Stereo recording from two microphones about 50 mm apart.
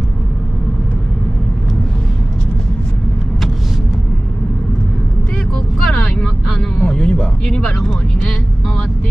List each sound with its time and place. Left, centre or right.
6.8 s music: centre